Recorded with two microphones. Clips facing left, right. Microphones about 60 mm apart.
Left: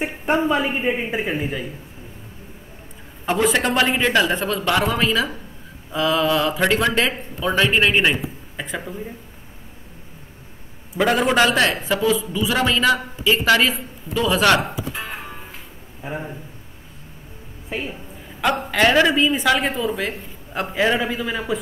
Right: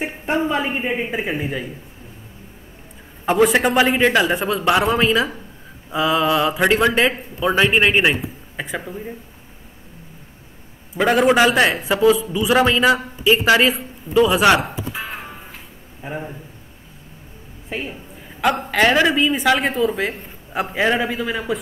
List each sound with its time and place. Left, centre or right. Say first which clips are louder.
0.0 s a woman's voice: left 1 dB; centre
3.3 s speech: right 4 dB; centre
11.0 s a man's voice: right 2 dB; centre
14.6 s music: even; centre
16.0 s a man's voice: even; centre
18.4 s a woman's voice: right 1 dB; centre